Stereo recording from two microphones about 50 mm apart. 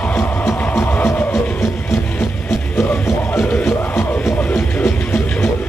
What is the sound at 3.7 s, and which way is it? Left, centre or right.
Music, left.